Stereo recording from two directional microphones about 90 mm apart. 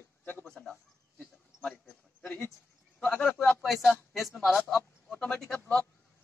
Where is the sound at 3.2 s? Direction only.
Centre (ahead or behind).